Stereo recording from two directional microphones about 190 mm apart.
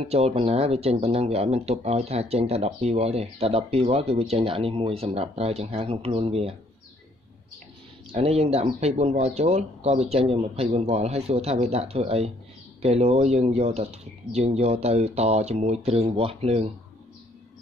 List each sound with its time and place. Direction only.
0.0 s speech: 30° right (ahead or behind)
8.1 s speech: 30° right (ahead or behind)